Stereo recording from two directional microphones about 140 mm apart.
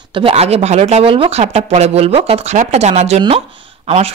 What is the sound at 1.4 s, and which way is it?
Speech, 55° right (ahead or behind).